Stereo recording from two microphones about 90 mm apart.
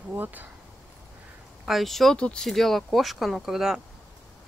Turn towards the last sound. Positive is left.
turn(degrees=-5)  # may be behind; listen again after turning